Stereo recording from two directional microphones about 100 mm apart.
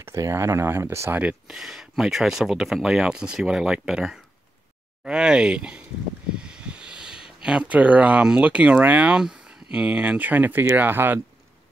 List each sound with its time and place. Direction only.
0.0 s speech: 30° right (ahead or behind)
1.2 s speech: 5° right (ahead or behind); by 11.1 s 20° right (ahead or behind)